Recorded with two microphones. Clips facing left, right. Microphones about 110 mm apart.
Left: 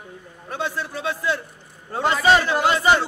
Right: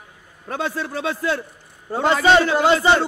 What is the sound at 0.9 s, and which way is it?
Speech, 90° right.